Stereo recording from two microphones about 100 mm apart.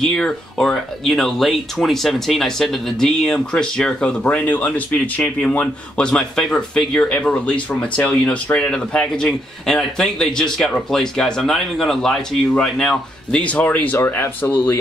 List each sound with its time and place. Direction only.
0.0 s speech: 5° left (ahead or behind); by 14.5 s 20° left (ahead or behind)